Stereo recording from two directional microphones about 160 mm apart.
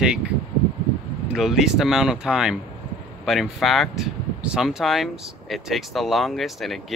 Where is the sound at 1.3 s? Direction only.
Centre (ahead or behind).